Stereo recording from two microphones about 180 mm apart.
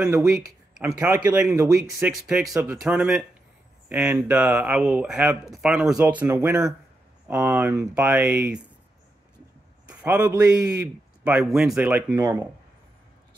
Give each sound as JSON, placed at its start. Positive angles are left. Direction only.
{"t": 0.0, "sound": "a man's voice", "side_deg": -10}
{"t": 2.8, "sound": "a man's voice", "side_deg": -5}
{"t": 9.8, "sound": "a man's voice", "side_deg": -5}